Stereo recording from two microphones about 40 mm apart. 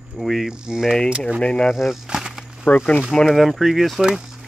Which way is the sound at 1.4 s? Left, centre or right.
Left.